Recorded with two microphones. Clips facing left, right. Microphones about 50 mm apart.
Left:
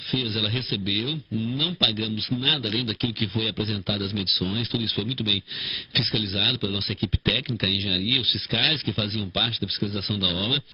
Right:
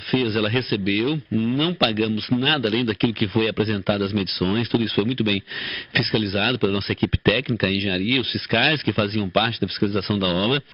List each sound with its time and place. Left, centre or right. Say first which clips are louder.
0.1 s a man's voice: right 7 dB; right